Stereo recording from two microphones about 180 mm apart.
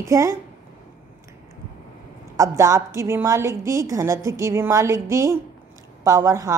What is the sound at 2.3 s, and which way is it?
A woman's voice, 20° right (ahead or behind).